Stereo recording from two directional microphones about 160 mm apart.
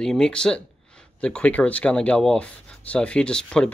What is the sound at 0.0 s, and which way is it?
Speech, 5° left (ahead or behind).